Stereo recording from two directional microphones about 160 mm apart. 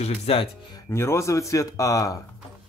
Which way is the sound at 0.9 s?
15° left (ahead or behind).